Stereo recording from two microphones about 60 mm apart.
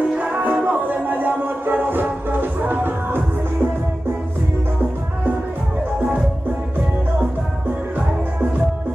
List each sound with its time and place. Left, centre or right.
0.2 s music: right